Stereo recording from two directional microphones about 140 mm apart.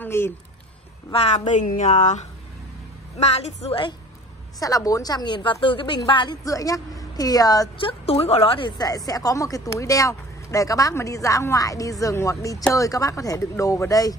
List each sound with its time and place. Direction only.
0.0 s speech: 15° left (ahead or behind)
1.1 s speech: 50° left (ahead or behind)
4.6 s speech: 25° left (ahead or behind)
7.7 s speech: 45° left (ahead or behind); by 14.1 s 25° left (ahead or behind)